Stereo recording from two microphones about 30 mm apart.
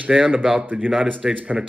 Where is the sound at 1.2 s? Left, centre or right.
Centre.